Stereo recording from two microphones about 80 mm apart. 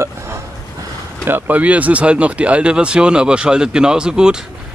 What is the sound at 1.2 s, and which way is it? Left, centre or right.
Speech, right.